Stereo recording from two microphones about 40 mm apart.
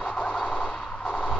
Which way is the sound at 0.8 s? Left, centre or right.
Centre.